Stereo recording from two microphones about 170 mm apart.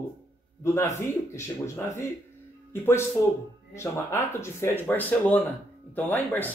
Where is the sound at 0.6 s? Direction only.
15° left (ahead or behind).